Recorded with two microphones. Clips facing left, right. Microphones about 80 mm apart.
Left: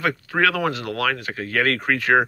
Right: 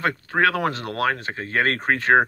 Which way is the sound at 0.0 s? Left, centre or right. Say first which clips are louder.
Even; right.